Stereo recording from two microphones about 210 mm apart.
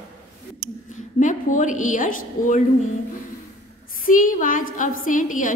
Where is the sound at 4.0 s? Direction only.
40° left (ahead or behind).